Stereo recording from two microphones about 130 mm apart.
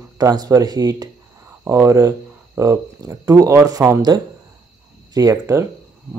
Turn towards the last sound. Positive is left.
turn(degrees=-25)  # may be behind; listen again after turning